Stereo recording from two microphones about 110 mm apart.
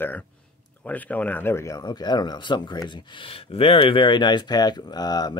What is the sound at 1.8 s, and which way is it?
Speech, 40° left (ahead or behind).